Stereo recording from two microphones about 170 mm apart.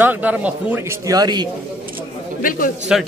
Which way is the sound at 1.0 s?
25° right (ahead or behind).